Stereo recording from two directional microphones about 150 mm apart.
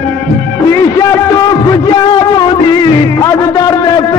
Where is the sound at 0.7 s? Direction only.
20° left (ahead or behind).